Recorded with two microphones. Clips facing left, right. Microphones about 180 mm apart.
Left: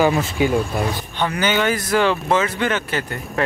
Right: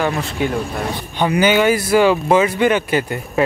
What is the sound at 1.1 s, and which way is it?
Speech, 10° right (ahead or behind).